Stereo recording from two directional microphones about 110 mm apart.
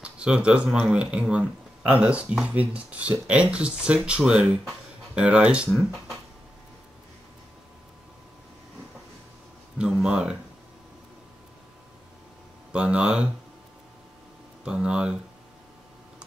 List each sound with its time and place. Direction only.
0.0 s speech: 10° right (ahead or behind)
9.8 s speech: 5° right (ahead or behind)
12.7 s speech: 10° right (ahead or behind)
14.6 s speech: 10° right (ahead or behind)